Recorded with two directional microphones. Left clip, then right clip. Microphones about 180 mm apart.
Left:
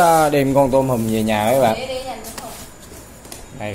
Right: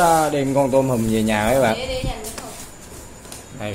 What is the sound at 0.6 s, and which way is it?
A man's voice, 5° left (ahead or behind).